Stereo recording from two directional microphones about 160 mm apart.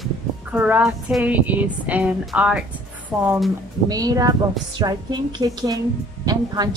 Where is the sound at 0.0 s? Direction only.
10° right (ahead or behind).